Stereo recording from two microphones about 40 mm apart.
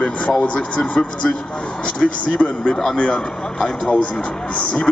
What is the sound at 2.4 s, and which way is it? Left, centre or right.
Speech, left.